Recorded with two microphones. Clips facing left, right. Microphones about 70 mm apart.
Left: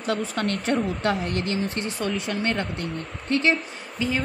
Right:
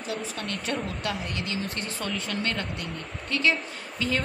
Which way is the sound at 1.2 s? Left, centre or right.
Left.